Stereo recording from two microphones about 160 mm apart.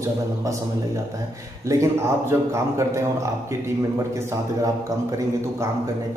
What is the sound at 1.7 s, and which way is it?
Speech, 15° right (ahead or behind).